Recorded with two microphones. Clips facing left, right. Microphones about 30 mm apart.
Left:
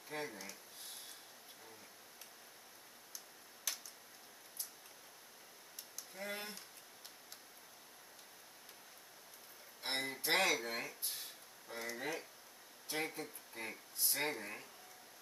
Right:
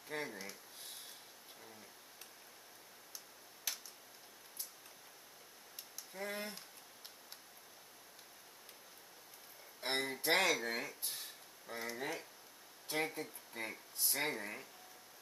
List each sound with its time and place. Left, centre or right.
0.1 s speech: centre
3.7 s tick-tock: centre
6.1 s a sound: centre
9.8 s speech: centre